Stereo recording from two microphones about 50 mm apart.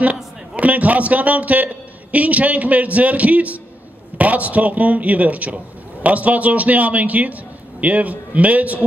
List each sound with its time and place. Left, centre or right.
0.0 s a man's voice: right